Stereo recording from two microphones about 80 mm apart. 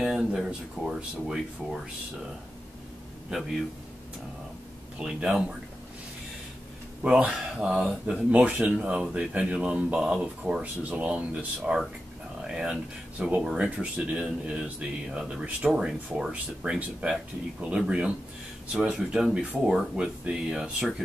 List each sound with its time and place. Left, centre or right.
0.0 s speech: centre
4.9 s speech: centre
7.0 s speech: centre
13.2 s speech: centre